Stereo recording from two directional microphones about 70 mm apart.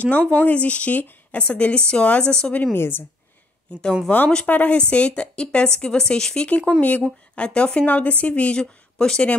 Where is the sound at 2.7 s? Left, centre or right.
Left.